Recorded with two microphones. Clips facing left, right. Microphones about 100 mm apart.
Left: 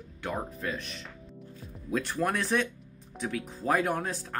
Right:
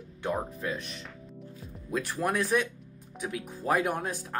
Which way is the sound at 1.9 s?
10° right (ahead or behind).